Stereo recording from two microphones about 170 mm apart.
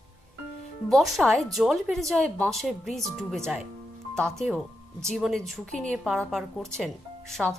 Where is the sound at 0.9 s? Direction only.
Centre (ahead or behind).